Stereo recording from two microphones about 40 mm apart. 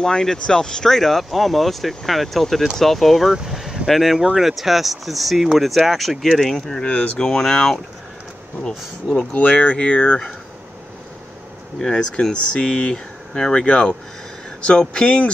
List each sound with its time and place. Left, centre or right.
0.0 s speech: centre
6.9 s speech: left
7.2 s speech: centre
9.3 s speech: left
11.8 s speech: centre